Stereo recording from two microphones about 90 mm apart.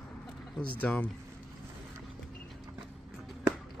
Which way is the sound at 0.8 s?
15° left (ahead or behind).